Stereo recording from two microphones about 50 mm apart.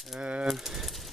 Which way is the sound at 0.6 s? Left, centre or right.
Centre.